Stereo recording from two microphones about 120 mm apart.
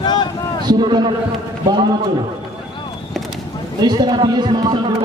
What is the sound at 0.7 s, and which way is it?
Speech, 35° right (ahead or behind).